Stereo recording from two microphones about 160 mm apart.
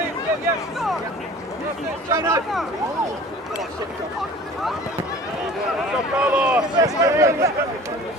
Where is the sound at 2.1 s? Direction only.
20° right (ahead or behind).